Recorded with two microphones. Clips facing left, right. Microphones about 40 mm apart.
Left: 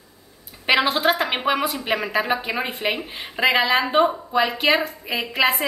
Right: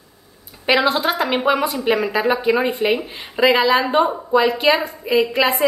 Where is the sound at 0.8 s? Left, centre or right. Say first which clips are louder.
Right 2 dB; centre.